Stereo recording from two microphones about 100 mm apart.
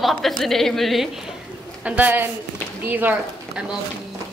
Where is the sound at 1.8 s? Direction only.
15° right (ahead or behind).